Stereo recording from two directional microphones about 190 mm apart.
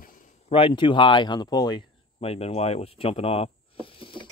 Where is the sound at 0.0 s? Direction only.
45° left (ahead or behind).